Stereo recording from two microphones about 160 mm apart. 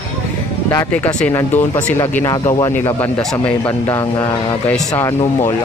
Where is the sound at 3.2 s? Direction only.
Centre (ahead or behind).